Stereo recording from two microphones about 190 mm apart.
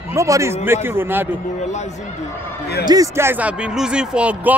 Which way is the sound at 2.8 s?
15° right (ahead or behind).